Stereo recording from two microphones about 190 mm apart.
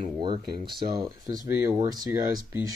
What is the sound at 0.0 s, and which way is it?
Speech, 25° right (ahead or behind).